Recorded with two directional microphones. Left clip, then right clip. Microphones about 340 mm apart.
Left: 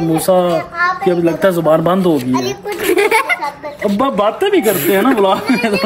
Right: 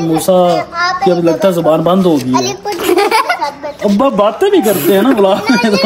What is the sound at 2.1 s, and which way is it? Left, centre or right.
Baby laughter, centre.